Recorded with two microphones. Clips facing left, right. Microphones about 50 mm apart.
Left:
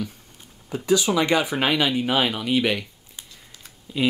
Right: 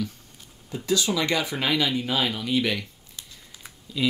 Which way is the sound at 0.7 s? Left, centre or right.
Left.